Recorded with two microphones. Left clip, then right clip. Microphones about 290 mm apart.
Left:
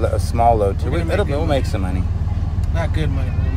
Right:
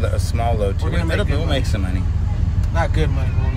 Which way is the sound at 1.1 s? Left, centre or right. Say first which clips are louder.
Left 4 dB; left.